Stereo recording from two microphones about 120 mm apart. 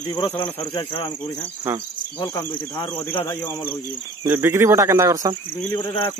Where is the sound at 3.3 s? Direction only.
25° left (ahead or behind).